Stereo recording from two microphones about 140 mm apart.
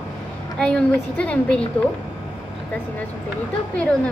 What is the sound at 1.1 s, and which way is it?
Speech, 10° left (ahead or behind).